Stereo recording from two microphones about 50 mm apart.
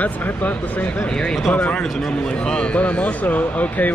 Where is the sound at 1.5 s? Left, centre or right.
Left.